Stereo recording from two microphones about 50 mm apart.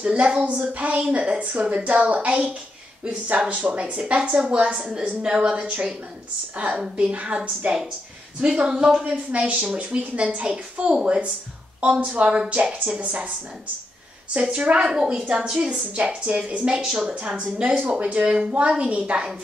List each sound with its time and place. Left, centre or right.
0.0 s a woman's voice: right
14.3 s a woman's voice: right